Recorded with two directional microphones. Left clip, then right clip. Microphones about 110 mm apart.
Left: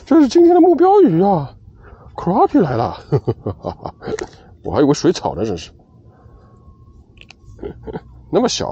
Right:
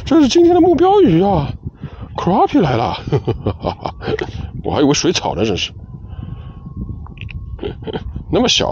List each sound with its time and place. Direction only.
0.0 s speech: 20° right (ahead or behind)
7.6 s oink: 20° right (ahead or behind)